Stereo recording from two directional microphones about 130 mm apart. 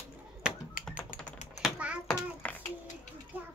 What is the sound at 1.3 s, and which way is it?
Typing, 70° left (ahead or behind).